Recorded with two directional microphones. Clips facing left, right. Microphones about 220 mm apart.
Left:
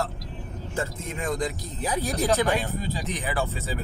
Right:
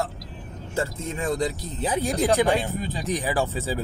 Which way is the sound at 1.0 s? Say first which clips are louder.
Right 3 dB; 30° right (ahead or behind).